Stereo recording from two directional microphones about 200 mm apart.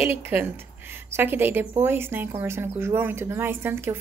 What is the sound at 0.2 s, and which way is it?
A woman's voice, 10° right (ahead or behind).